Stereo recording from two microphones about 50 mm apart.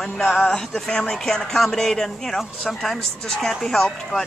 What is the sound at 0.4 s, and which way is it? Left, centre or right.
Speech, centre.